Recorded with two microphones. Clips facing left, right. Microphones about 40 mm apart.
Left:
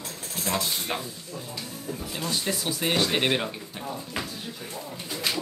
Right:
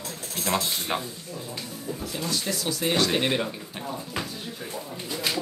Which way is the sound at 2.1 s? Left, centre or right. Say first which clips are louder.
Left 1 dB; left.